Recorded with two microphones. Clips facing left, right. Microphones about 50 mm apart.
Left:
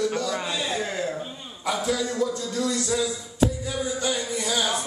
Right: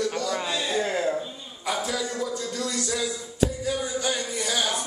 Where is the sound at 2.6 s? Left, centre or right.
Left.